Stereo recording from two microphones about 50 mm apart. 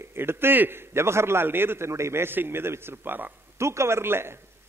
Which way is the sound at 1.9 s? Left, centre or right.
Right.